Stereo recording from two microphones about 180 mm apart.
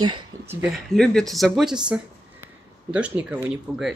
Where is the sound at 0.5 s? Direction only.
10° right (ahead or behind).